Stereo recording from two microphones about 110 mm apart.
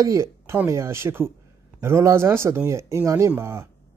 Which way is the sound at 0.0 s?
25° right (ahead or behind).